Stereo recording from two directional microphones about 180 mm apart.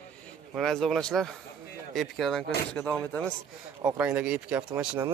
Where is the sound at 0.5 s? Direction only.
Centre (ahead or behind).